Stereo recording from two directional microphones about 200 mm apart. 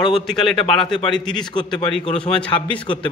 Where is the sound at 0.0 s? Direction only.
25° left (ahead or behind).